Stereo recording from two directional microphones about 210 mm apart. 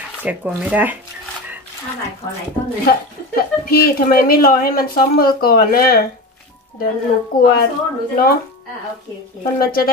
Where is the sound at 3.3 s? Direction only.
45° left (ahead or behind).